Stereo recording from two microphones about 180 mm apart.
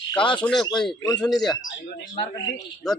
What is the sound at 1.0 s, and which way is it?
Speech, 20° left (ahead or behind).